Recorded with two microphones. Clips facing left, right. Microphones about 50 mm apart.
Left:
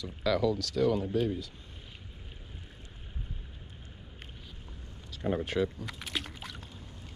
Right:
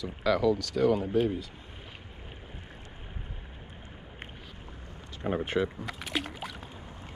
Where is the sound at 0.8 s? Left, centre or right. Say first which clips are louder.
Right 1 dB; right.